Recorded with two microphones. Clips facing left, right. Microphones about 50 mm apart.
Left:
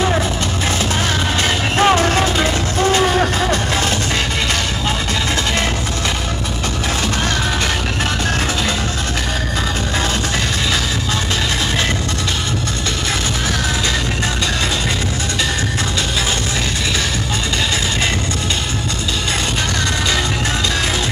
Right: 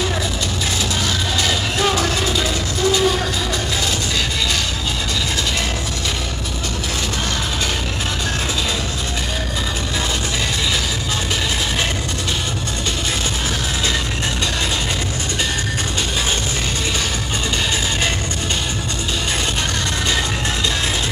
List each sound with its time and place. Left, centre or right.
1.4 s vehicle: left